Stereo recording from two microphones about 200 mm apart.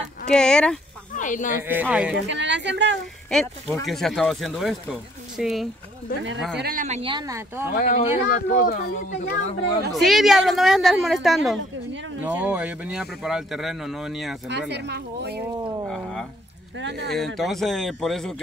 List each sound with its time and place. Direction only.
0.3 s speech: 5° left (ahead or behind)
1.1 s speech: 40° left (ahead or behind)
1.6 s speech: 10° right (ahead or behind)
2.1 s speech: 60° right (ahead or behind)
3.3 s speech: centre (ahead or behind)
6.5 s speech: 50° right (ahead or behind)
7.0 s speech: 25° right (ahead or behind)
7.7 s speech: 40° left (ahead or behind)
9.9 s speech: centre (ahead or behind)
14.5 s speech: 60° right (ahead or behind)
15.9 s speech: centre (ahead or behind)
16.7 s speech: 60° right (ahead or behind)
17.1 s speech: centre (ahead or behind)